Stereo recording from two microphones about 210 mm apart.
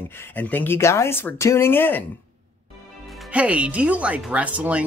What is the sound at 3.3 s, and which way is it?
Speech, 5° right (ahead or behind).